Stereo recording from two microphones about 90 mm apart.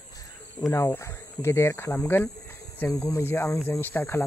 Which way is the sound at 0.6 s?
35° left (ahead or behind).